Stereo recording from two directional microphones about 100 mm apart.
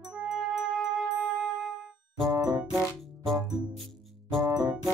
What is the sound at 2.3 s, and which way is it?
Music, 40° right (ahead or behind).